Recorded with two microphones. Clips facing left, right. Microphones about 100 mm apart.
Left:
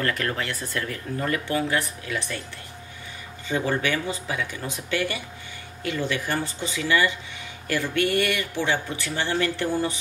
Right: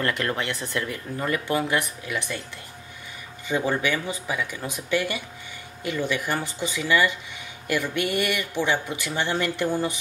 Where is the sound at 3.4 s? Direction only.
15° right (ahead or behind).